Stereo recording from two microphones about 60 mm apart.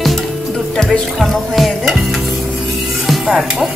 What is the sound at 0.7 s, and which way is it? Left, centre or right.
Music, centre.